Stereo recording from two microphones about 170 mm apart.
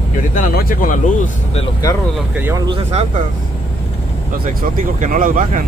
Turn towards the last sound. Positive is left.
turn(degrees=-50)  # may be behind; listen again after turning